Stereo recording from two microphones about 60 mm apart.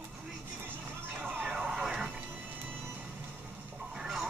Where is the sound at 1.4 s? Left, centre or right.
Centre.